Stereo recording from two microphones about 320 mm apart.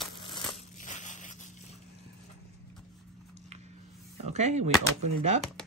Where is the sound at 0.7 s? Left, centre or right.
Left.